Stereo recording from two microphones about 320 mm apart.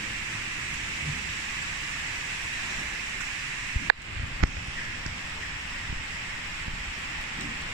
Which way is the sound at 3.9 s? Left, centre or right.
Right.